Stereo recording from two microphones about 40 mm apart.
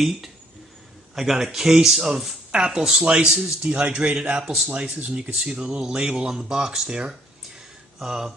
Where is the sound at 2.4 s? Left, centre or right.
Right.